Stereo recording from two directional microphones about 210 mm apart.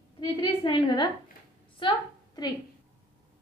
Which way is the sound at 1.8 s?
20° left (ahead or behind).